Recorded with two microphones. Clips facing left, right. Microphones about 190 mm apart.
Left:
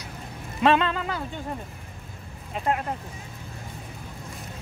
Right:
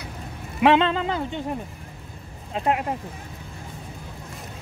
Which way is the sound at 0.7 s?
25° right (ahead or behind).